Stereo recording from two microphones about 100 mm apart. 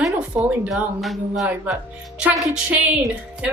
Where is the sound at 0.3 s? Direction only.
15° right (ahead or behind).